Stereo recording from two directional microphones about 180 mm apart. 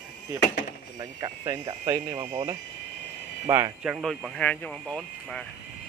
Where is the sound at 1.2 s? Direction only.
20° right (ahead or behind).